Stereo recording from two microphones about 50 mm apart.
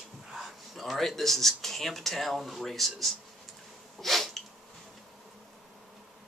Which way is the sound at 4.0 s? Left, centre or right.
Centre.